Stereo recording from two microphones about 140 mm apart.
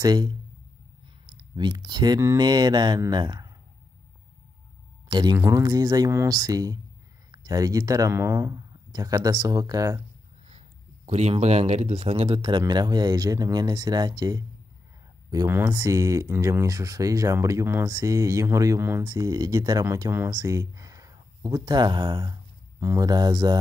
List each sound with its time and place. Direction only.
0.0 s speech: 30° right (ahead or behind)
5.0 s speech: 30° right (ahead or behind)
11.1 s speech: 50° right (ahead or behind); by 23.6 s 30° right (ahead or behind)